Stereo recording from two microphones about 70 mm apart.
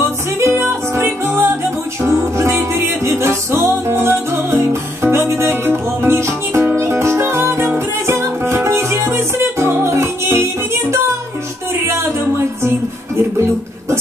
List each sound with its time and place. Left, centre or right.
0.4 s music: right
12.6 s music: right